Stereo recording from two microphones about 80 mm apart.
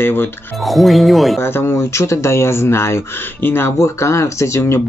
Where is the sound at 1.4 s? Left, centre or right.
Left.